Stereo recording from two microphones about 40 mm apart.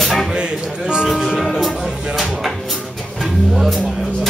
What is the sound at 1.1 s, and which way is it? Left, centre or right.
Music, centre.